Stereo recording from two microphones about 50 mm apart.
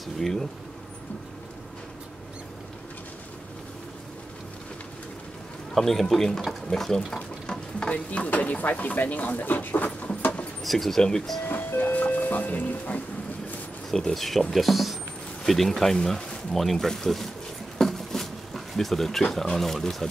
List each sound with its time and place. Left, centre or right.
0.0 s speech: centre
5.8 s speech: centre; by 9.8 s left
10.6 s speech: centre
11.4 s speech: left
13.8 s speech: centre
17.7 s a sound: centre